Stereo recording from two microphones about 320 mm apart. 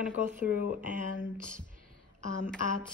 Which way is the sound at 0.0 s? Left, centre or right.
Centre.